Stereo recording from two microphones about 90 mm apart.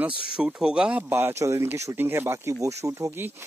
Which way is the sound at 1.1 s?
30° right (ahead or behind).